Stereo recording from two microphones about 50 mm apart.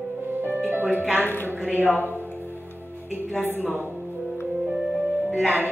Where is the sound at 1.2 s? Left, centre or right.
Left.